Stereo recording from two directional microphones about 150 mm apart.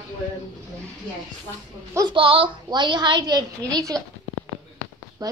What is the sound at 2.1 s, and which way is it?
A woman's voice, 35° right (ahead or behind).